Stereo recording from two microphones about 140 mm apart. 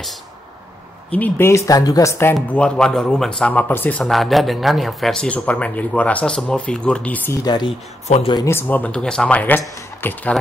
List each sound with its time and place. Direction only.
1.1 s speech: 15° left (ahead or behind)
1.7 s speech: 25° left (ahead or behind)
2.3 s speech: 5° left (ahead or behind)
4.0 s speech: centre (ahead or behind)
7.4 s speech: 30° left (ahead or behind)
8.1 s speech: 45° left (ahead or behind)
8.5 s speech: 15° left (ahead or behind)